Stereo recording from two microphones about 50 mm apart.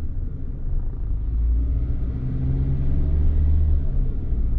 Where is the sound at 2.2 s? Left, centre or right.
Centre.